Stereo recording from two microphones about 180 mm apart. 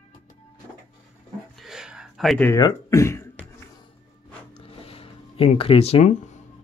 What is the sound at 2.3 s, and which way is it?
Speech, 10° left (ahead or behind).